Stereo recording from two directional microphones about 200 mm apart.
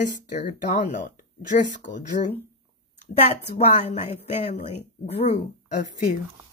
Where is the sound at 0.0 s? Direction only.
40° left (ahead or behind).